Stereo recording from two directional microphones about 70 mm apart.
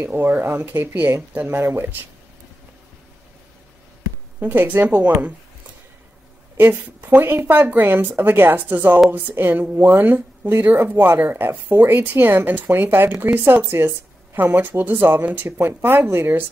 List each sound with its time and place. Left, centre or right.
0.0 s speech: right
4.4 s speech: right
6.5 s speech: right